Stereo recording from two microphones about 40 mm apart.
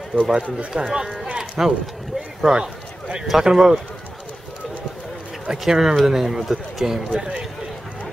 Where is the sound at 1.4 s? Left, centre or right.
Centre.